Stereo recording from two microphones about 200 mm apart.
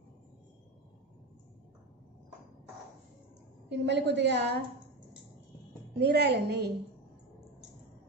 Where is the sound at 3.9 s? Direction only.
60° right (ahead or behind).